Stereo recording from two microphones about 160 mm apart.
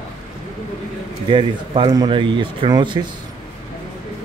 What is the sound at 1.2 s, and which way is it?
Speech, 30° right (ahead or behind).